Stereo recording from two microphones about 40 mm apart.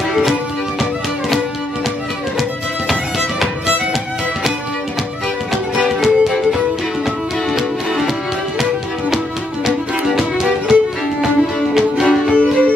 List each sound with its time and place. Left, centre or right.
0.2 s music: centre
2.9 s music: centre
5.9 s music: centre
7.5 s music: centre
9.7 s music: centre
12.3 s music: left